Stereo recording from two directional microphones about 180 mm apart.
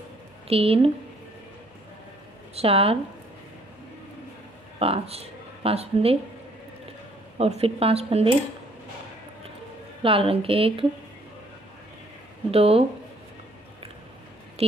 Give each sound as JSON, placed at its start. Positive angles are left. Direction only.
{"t": 0.5, "sound": "speech", "side_deg": -35}
{"t": 2.5, "sound": "speech", "side_deg": -30}
{"t": 4.7, "sound": "speech", "side_deg": -30}
{"t": 7.3, "sound": "speech", "side_deg": -35}
{"t": 10.0, "sound": "speech", "side_deg": -30}
{"t": 12.4, "sound": "speech", "side_deg": -35}